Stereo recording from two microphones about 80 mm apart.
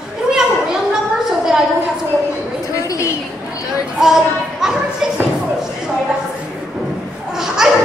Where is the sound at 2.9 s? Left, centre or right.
Left.